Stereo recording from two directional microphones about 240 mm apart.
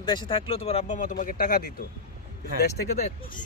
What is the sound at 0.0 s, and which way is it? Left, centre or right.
Speech, centre.